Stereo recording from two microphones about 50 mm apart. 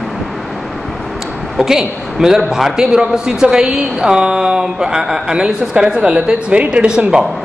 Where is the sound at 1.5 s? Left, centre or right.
Centre.